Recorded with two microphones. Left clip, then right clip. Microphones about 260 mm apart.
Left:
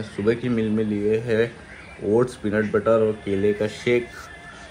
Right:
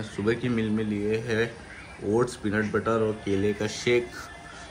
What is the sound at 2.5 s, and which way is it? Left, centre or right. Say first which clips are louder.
Speech: left 9 dB; centre.